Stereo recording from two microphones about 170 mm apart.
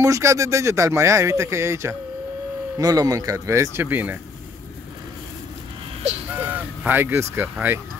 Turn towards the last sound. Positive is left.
turn(degrees=-10)  # may be behind; listen again after turning